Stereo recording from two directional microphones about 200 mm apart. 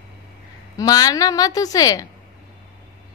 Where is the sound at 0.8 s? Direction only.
20° left (ahead or behind).